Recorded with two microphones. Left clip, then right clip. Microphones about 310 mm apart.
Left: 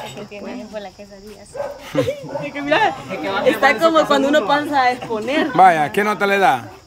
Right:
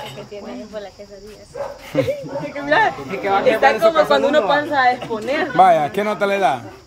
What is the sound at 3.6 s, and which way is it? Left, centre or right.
A woman's voice, left.